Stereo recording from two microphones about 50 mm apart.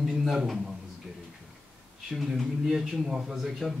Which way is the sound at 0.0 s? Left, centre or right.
Centre.